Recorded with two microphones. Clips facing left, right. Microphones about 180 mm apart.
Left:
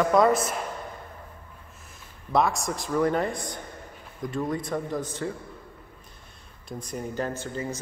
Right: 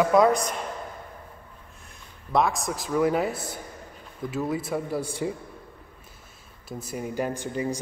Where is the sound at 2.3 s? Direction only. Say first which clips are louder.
Even; centre (ahead or behind).